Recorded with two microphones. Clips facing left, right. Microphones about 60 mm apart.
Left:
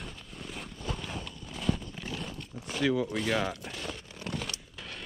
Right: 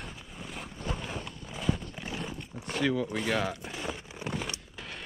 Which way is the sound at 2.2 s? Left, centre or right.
Centre.